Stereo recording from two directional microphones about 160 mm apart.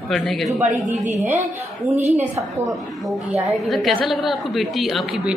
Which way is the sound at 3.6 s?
Centre (ahead or behind).